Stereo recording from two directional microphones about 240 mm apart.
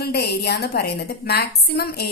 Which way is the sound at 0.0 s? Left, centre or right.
Left.